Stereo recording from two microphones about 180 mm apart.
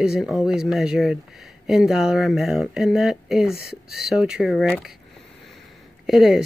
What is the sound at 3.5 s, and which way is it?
Speech, 60° left (ahead or behind).